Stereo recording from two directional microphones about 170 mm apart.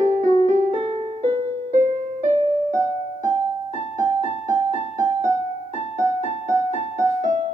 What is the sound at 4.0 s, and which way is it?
Keyboard, 45° left (ahead or behind).